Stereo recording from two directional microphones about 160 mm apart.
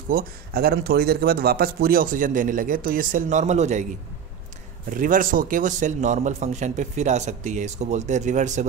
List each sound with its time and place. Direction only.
0.1 s speech: 65° right (ahead or behind); by 3.8 s 45° right (ahead or behind)
4.8 s a man's voice: 55° right (ahead or behind)